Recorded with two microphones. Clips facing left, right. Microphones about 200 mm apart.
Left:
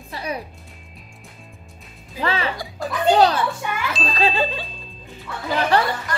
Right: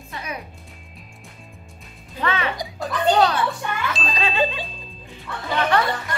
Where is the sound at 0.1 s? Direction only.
35° left (ahead or behind).